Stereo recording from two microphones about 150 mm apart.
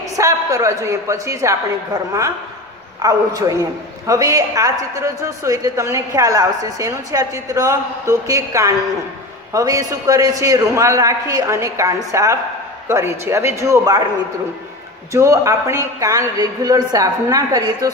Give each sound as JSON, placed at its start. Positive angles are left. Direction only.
{"t": 0.1, "sound": "a woman's voice", "side_deg": -20}
{"t": 3.0, "sound": "a woman's voice", "side_deg": -20}
{"t": 15.1, "sound": "a woman's voice", "side_deg": -20}